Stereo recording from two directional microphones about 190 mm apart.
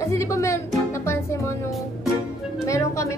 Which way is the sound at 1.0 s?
15° left (ahead or behind).